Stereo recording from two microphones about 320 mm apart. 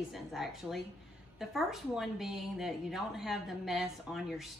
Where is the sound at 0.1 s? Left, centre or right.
Centre.